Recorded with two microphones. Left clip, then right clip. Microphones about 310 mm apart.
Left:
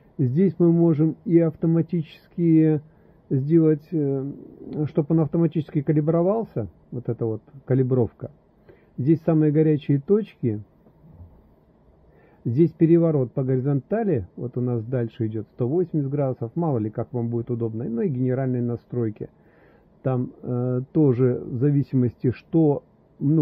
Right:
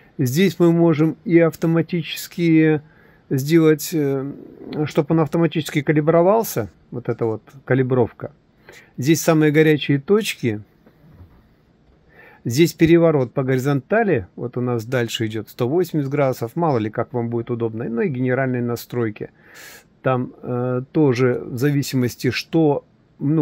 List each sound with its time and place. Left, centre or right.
0.2 s speech: centre
12.2 s speech: centre